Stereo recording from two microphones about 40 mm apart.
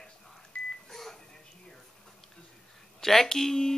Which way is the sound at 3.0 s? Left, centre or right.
Centre.